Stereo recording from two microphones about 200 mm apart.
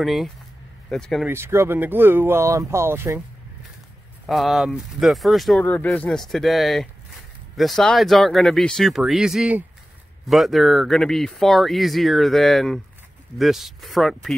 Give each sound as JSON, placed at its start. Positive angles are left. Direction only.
{"t": 0.0, "sound": "speech", "side_deg": 0}
{"t": 1.2, "sound": "speech", "side_deg": -10}
{"t": 4.3, "sound": "speech", "side_deg": 0}